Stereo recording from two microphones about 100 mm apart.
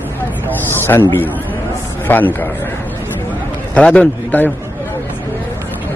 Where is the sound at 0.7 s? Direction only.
25° left (ahead or behind).